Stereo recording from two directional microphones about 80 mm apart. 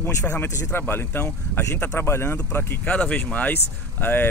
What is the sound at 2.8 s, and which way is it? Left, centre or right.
Speech, centre.